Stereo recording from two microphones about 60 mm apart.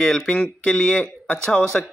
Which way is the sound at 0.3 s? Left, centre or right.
Centre.